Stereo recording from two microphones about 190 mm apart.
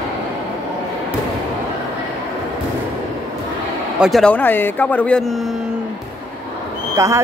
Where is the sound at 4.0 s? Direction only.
Centre (ahead or behind).